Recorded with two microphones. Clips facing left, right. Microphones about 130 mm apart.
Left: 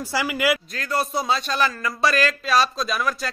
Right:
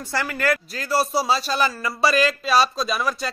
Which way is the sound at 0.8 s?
5° right (ahead or behind).